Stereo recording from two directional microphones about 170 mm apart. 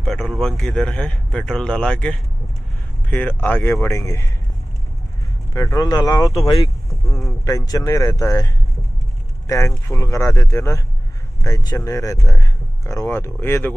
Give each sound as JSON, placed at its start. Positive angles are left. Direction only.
{"t": 0.0, "sound": "speech", "side_deg": 0}
{"t": 5.5, "sound": "speech", "side_deg": 20}
{"t": 6.4, "sound": "speech", "side_deg": 30}
{"t": 7.2, "sound": "speech", "side_deg": 20}